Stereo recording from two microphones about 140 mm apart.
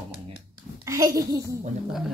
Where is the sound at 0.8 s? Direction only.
20° right (ahead or behind).